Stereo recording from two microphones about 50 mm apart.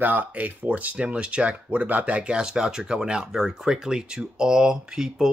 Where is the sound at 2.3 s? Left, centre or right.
Centre.